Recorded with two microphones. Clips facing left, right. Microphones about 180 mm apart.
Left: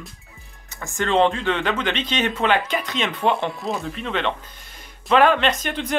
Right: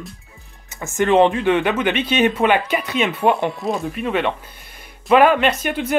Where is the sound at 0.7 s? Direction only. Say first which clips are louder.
Right 5 dB; 20° right (ahead or behind).